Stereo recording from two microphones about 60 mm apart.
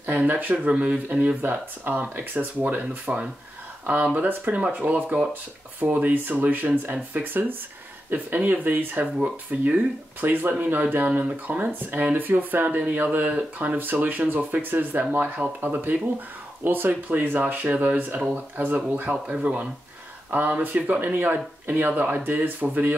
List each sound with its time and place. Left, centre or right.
0.0 s speech: right
19.2 s speech: centre; by 22.9 s right